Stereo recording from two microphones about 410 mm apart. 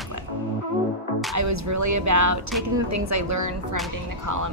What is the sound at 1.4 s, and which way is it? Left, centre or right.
A woman's voice, right.